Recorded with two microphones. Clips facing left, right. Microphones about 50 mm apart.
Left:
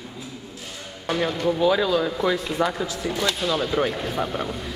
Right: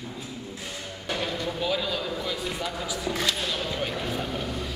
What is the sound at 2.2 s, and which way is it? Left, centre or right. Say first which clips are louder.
Speech: left 8 dB; left.